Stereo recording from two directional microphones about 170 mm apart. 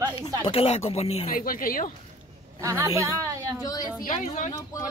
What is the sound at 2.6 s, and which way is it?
A woman's voice, 20° right (ahead or behind).